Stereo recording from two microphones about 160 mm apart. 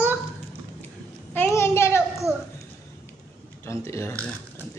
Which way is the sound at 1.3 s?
15° left (ahead or behind).